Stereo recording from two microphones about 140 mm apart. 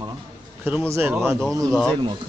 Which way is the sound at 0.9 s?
15° right (ahead or behind).